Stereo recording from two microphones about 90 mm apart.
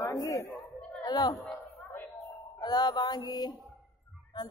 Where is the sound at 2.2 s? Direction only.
45° left (ahead or behind).